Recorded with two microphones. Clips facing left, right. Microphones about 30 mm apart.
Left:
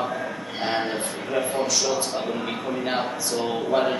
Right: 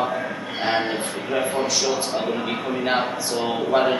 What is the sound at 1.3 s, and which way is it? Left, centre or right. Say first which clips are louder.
A man's voice: right 1 dB; centre.